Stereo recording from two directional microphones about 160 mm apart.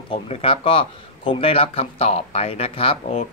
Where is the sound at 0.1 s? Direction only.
35° left (ahead or behind).